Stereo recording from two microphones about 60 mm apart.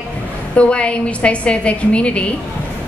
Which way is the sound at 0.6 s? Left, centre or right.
Centre.